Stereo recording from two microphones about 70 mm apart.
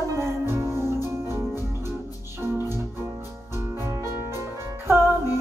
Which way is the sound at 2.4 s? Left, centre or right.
Right.